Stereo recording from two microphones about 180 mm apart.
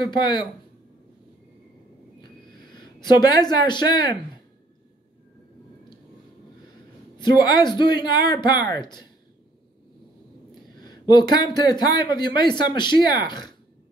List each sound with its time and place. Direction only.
2.6 s speech: 25° left (ahead or behind)
7.2 s speech: 25° left (ahead or behind)
10.8 s speech: 25° left (ahead or behind)